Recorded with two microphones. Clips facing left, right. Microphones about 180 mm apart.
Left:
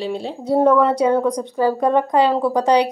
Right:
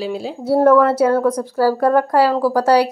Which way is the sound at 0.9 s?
15° left (ahead or behind).